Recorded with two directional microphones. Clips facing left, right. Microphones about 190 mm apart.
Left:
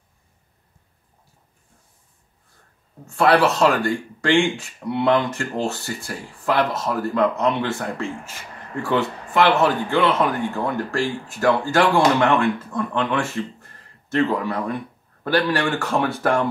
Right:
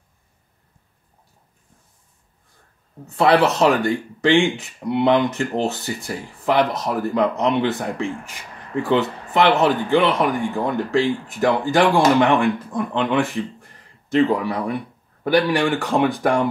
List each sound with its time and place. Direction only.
3.1 s speech: 20° right (ahead or behind)